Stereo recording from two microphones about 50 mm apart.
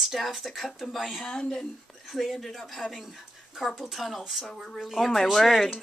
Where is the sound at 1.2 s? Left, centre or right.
Centre.